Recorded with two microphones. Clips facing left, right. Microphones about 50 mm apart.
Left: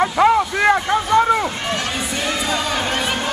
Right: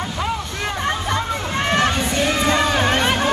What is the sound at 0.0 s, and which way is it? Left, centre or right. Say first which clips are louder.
Vehicle: left 10 dB; left.